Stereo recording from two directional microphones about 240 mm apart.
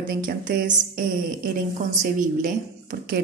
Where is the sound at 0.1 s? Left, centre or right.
Right.